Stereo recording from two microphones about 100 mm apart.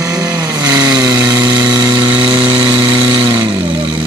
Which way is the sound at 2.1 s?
15° right (ahead or behind).